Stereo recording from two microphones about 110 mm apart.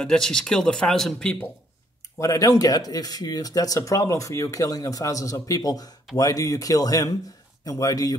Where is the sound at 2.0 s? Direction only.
30° left (ahead or behind).